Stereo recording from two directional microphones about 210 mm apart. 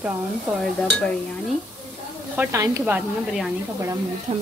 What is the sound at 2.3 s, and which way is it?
Speech, 15° right (ahead or behind).